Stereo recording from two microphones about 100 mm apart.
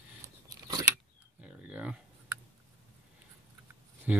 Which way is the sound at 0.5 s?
35° right (ahead or behind).